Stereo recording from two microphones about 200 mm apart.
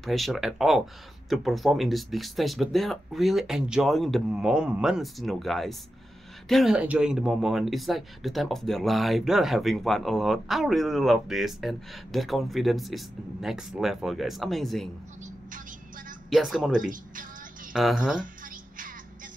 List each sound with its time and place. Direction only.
0.0 s speech: centre (ahead or behind)
16.3 s speech: centre (ahead or behind)
16.9 s a woman's voice: 45° right (ahead or behind)
17.7 s speech: centre (ahead or behind)
18.2 s a sound: 45° right (ahead or behind)